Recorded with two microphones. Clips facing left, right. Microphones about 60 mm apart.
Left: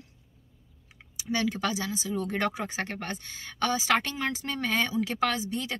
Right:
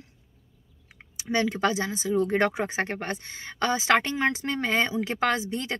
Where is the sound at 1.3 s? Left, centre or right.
Right.